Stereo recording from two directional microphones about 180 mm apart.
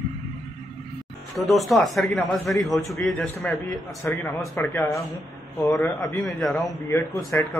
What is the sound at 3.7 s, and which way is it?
A man's voice, 15° left (ahead or behind).